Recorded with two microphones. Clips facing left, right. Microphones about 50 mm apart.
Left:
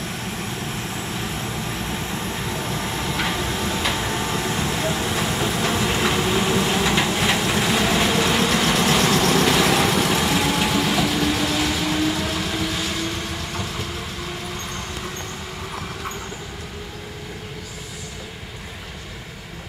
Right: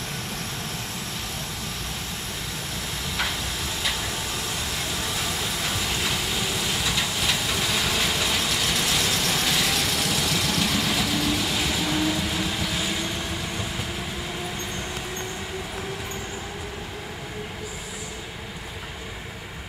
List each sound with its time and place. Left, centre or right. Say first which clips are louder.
3.6 s vehicle: left 4 dB; left
11.1 s vehicle: left 4 dB; centre
12.3 s vehicle: left 3 dB; centre